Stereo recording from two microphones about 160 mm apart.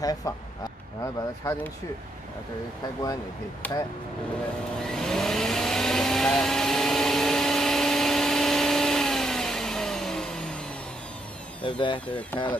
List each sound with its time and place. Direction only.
0.0 s speech: 20° left (ahead or behind)
3.6 s speech: 10° left (ahead or behind)
4.8 s vehicle: 5° left (ahead or behind)
12.1 s speech: 10° left (ahead or behind)